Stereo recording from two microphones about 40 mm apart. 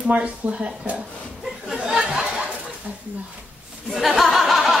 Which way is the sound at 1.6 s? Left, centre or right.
Centre.